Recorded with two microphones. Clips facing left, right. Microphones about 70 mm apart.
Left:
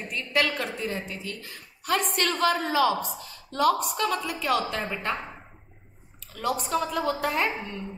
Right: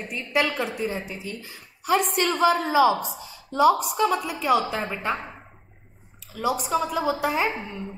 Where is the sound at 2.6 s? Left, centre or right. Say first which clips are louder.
Right 5 dB; centre.